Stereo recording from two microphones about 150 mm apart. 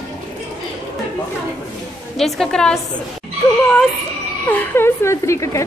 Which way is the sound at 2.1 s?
Centre (ahead or behind).